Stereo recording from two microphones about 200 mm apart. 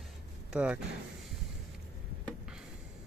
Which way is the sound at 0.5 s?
5° right (ahead or behind).